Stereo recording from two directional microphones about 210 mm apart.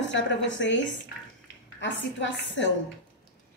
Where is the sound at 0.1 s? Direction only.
60° left (ahead or behind).